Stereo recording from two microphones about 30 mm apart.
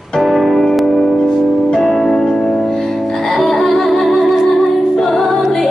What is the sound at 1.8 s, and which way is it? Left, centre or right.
Music, centre.